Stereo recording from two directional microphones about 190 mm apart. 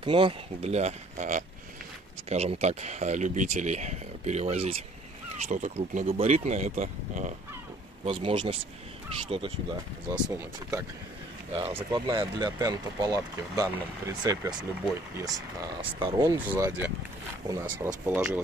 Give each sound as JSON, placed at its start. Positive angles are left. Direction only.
{"t": 0.0, "sound": "speech", "side_deg": -25}
{"t": 10.2, "sound": "speech", "side_deg": -15}
{"t": 11.5, "sound": "speech", "side_deg": -30}